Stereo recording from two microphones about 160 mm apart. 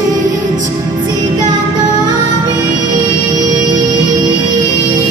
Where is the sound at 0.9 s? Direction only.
25° right (ahead or behind).